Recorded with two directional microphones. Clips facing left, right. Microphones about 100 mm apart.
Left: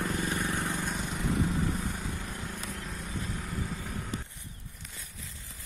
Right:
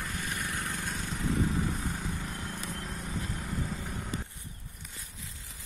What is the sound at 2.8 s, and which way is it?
Vehicle, centre (ahead or behind).